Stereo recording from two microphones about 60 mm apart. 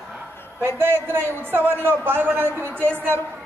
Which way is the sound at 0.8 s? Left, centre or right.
Right.